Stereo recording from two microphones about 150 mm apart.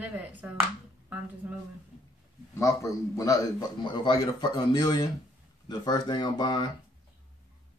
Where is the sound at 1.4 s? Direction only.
10° right (ahead or behind).